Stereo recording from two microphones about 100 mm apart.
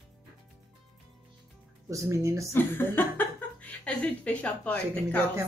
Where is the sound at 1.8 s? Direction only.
30° right (ahead or behind).